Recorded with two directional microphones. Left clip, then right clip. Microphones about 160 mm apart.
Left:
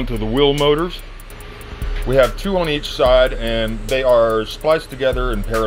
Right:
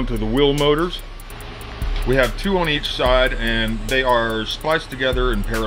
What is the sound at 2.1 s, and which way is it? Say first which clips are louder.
Speech: left 3 dB; 20° left (ahead or behind).